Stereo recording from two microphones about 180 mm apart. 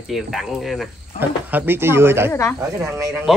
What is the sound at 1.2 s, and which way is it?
Speech, 10° right (ahead or behind).